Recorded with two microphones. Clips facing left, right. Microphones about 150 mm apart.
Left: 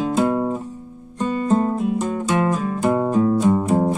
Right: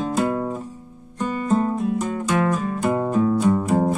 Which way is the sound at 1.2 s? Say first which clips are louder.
Left 2 dB; 25° left (ahead or behind).